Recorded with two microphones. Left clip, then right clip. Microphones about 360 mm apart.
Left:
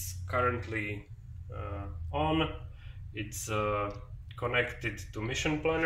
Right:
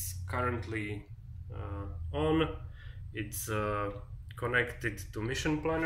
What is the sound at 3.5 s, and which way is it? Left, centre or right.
Speech, left.